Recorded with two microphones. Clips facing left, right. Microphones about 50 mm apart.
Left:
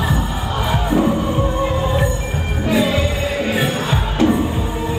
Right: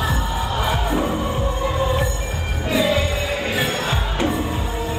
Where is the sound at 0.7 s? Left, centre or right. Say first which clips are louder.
Left 7 dB; left.